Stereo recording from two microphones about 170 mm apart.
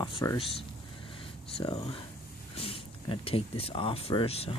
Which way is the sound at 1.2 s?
35° left (ahead or behind).